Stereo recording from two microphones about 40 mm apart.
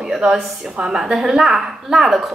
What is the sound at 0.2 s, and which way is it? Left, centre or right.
A woman's voice, right.